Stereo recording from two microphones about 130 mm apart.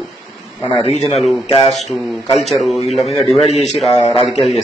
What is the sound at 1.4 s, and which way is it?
Speech, 50° left (ahead or behind).